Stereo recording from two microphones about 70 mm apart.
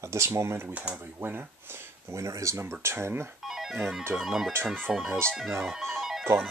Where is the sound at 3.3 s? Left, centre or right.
Centre.